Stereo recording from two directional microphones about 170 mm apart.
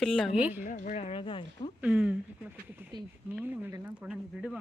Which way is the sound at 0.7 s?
55° left (ahead or behind).